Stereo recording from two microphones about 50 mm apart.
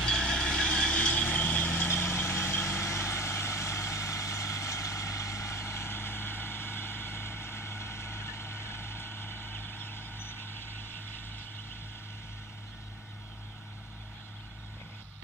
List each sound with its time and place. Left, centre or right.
0.0 s vehicle: centre; by 1.9 s left
1.9 s vehicle: left
2.8 s vehicle: left